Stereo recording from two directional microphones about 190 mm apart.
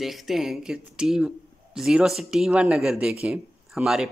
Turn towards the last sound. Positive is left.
turn(degrees=-5)  # may be behind; listen again after turning